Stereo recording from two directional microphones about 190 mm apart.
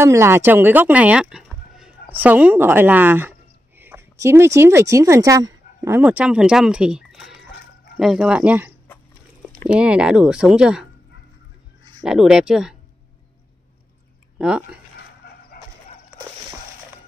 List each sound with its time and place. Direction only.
0.0 s speech: 15° right (ahead or behind)
12.0 s speech: 5° right (ahead or behind)
14.4 s speech: 5° right (ahead or behind)
15.6 s horse: 55° left (ahead or behind)